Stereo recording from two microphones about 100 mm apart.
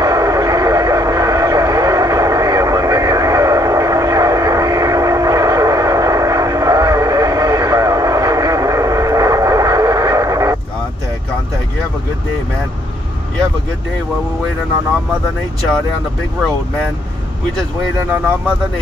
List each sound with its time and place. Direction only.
0.0 s vehicle: 35° right (ahead or behind)